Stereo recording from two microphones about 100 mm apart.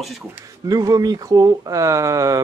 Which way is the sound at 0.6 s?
35° right (ahead or behind).